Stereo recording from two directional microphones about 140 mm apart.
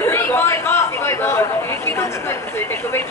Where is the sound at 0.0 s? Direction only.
15° left (ahead or behind).